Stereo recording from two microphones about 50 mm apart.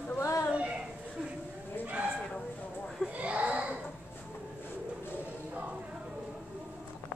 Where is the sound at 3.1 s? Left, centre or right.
Right.